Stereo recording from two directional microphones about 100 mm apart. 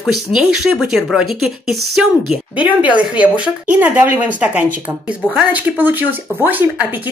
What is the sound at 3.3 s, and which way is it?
Speech, 15° right (ahead or behind).